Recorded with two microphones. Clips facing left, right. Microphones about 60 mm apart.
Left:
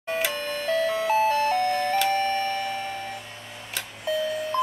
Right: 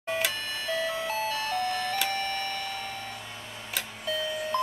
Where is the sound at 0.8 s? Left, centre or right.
Left.